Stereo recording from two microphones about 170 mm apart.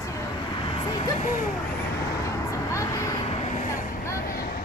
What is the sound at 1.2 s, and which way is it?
Speech, 50° left (ahead or behind).